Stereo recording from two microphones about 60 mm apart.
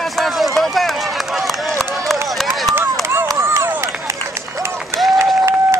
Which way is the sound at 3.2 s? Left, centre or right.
Right.